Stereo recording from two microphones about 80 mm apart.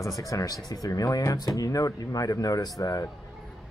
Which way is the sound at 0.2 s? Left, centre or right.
Left.